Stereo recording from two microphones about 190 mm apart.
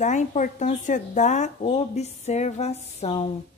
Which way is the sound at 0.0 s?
40° left (ahead or behind).